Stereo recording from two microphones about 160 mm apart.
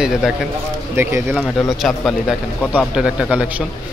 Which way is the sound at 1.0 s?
15° right (ahead or behind).